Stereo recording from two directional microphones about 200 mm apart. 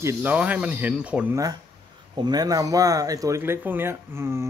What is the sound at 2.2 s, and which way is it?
Speech, 20° right (ahead or behind).